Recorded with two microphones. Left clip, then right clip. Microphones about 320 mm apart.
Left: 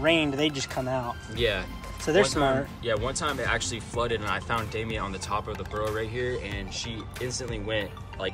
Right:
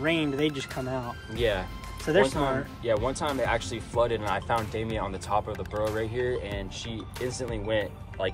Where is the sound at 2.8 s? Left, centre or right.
Centre.